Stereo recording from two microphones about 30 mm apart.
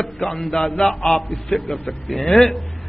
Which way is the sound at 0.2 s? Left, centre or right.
Left.